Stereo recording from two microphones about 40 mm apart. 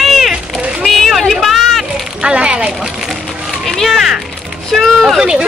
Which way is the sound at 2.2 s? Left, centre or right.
Right.